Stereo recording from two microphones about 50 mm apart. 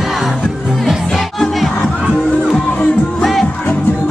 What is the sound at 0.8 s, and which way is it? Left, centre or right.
Music, centre.